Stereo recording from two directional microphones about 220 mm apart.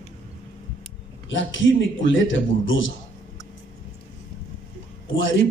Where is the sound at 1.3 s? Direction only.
60° left (ahead or behind).